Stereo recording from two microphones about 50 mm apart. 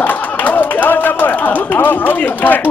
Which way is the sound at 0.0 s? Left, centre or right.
Left.